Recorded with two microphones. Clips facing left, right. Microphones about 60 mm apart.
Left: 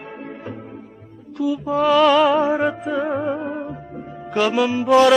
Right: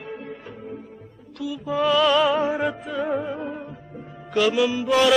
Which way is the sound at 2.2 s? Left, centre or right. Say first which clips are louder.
Left 4 dB; left.